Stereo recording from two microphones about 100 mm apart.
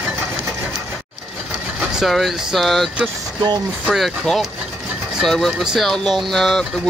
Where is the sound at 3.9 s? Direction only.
Centre (ahead or behind).